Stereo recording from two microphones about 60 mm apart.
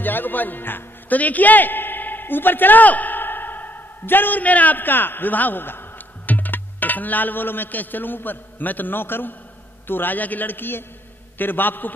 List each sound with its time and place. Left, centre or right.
0.0 s a man's voice: left